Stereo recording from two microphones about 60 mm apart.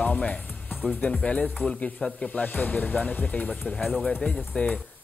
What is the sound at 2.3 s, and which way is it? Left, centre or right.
Speech, left.